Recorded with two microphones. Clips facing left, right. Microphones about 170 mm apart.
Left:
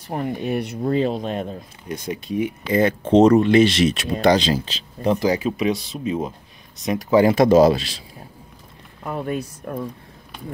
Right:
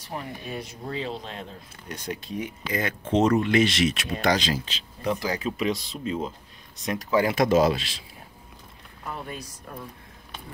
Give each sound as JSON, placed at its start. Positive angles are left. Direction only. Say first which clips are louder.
{"t": 0.0, "sound": "speech", "louder": "left 10 dB", "side_deg": 55}
{"t": 2.7, "sound": "speech", "louder": "left 9 dB", "side_deg": 30}
{"t": 5.3, "sound": "speech", "louder": "left 6 dB", "side_deg": 15}
{"t": 9.0, "sound": "speech", "louder": "left 10 dB", "side_deg": 60}